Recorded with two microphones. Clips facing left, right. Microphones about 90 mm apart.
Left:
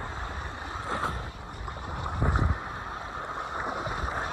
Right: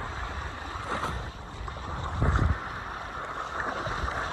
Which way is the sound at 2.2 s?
15° left (ahead or behind).